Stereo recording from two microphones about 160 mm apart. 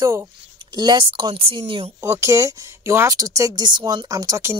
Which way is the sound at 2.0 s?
15° right (ahead or behind).